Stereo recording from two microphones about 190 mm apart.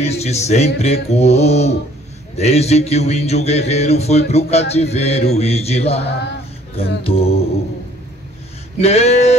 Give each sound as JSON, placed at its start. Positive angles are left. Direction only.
{"t": 0.0, "sound": "speech", "side_deg": 35}
{"t": 8.7, "sound": "speech", "side_deg": 35}